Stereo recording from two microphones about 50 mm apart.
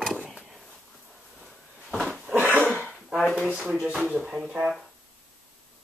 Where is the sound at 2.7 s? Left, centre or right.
Centre.